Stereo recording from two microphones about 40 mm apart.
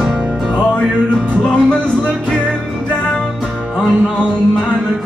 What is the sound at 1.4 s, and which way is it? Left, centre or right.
Music, left.